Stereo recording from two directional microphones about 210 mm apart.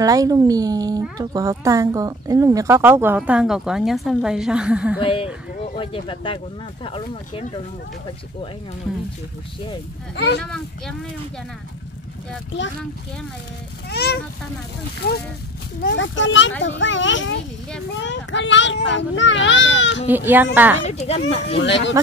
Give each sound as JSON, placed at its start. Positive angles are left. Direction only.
{"t": 0.0, "sound": "speech", "side_deg": -15}
{"t": 5.0, "sound": "speech", "side_deg": 25}
{"t": 10.1, "sound": "speech", "side_deg": 55}
{"t": 10.4, "sound": "speech", "side_deg": 5}
{"t": 13.8, "sound": "a child's voice", "side_deg": 50}
{"t": 15.8, "sound": "a child's voice", "side_deg": 60}
{"t": 20.1, "sound": "speech", "side_deg": -10}
{"t": 20.8, "sound": "speech", "side_deg": 35}
{"t": 21.6, "sound": "a child's voice", "side_deg": 60}